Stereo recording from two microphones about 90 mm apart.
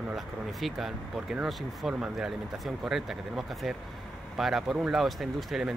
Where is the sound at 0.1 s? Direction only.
Centre (ahead or behind).